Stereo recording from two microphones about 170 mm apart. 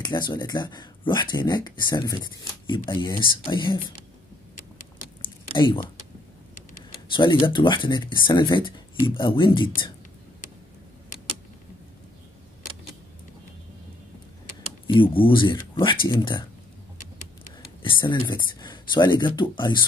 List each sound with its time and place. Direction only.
0.0 s speech: 25° left (ahead or behind)
5.2 s a sound: 30° left (ahead or behind)
7.2 s speech: 30° left (ahead or behind)
14.9 s speech: 30° left (ahead or behind)
17.8 s speech: 25° left (ahead or behind)